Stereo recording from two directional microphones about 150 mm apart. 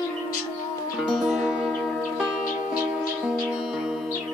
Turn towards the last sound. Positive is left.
turn(degrees=-5)  # may be behind; listen again after turning